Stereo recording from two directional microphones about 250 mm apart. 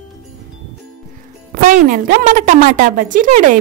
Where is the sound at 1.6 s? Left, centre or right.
Right.